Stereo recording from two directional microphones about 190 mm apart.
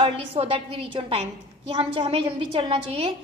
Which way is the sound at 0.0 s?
30° right (ahead or behind).